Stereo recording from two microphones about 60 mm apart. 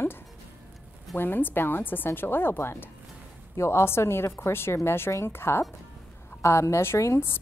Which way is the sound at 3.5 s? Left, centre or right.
Left.